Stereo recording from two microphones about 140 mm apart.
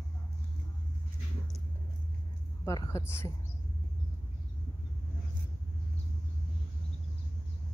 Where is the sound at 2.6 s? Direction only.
20° left (ahead or behind).